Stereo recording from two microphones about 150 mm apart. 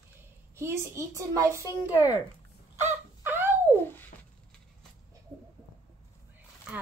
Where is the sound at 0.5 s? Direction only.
15° right (ahead or behind).